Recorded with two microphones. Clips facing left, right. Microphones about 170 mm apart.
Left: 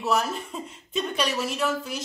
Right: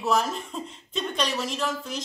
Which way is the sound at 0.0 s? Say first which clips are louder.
Even; centre (ahead or behind).